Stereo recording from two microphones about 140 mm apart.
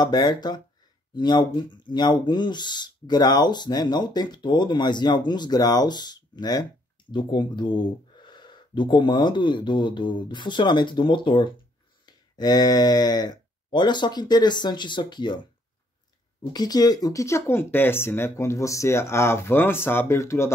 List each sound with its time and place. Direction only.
0.0 s speech: 30° left (ahead or behind)
16.5 s speech: 25° left (ahead or behind)